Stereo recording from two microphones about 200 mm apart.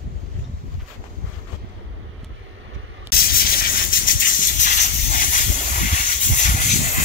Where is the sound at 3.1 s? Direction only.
50° left (ahead or behind).